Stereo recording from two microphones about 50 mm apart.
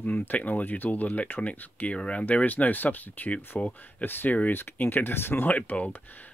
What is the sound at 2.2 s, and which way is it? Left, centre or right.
Speech, left.